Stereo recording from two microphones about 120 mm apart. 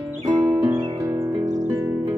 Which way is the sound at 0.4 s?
25° right (ahead or behind).